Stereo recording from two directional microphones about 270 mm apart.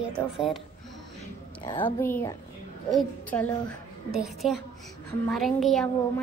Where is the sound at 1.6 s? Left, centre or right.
Centre.